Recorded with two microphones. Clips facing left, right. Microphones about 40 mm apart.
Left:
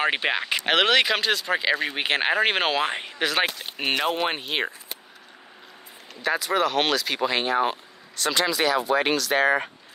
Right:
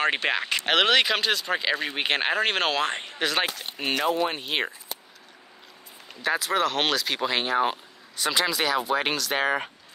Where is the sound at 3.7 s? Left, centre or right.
Left.